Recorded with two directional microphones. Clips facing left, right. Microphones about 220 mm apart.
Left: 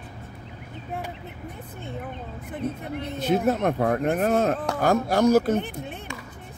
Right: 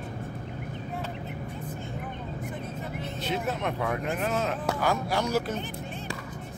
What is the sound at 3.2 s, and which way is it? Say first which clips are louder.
Speech: left 9 dB; 45° left (ahead or behind).